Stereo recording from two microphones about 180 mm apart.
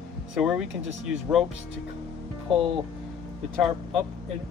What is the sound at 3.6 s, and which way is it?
Speech, centre (ahead or behind).